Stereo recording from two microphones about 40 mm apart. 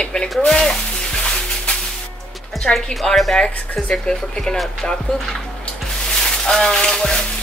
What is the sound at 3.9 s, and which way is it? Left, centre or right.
Speech, centre.